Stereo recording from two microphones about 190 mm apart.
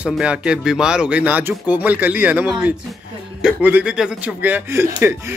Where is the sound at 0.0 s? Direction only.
5° right (ahead or behind).